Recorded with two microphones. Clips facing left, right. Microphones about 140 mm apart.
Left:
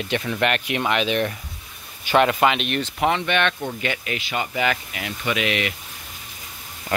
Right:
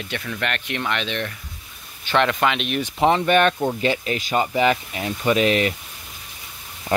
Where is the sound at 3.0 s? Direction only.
35° right (ahead or behind).